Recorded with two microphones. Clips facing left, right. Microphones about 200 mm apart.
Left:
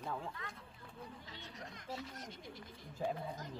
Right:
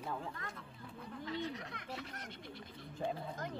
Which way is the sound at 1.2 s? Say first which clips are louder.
Right 11 dB; 65° right (ahead or behind).